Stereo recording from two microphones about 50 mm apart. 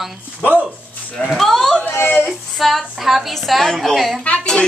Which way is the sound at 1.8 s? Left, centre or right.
Left.